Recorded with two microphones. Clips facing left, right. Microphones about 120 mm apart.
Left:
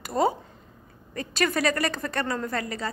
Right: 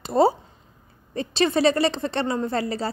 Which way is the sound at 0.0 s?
30° right (ahead or behind).